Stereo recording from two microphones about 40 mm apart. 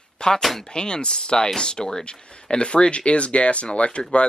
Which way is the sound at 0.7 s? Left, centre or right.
Left.